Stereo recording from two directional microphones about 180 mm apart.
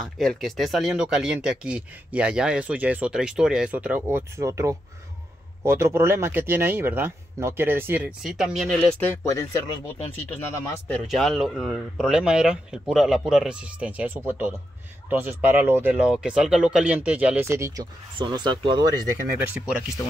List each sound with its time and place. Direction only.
0.0 s speech: centre (ahead or behind)
9.0 s speech: 15° left (ahead or behind)
10.9 s speech: centre (ahead or behind); by 19.0 s 25° right (ahead or behind)